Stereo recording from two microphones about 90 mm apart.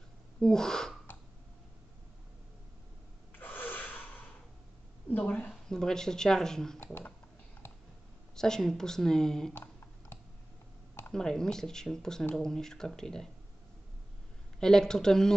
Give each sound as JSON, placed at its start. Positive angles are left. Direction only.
{"t": 0.4, "sound": "speech", "side_deg": 5}
{"t": 3.3, "sound": "gasp", "side_deg": 20}
{"t": 5.1, "sound": "a sound", "side_deg": 15}
{"t": 5.5, "sound": "speech", "side_deg": 5}
{"t": 6.8, "sound": "speech", "side_deg": 20}
{"t": 8.4, "sound": "speech", "side_deg": 5}
{"t": 9.5, "sound": "a sound", "side_deg": 25}
{"t": 11.1, "sound": "speech", "side_deg": 5}
{"t": 14.6, "sound": "speech", "side_deg": 5}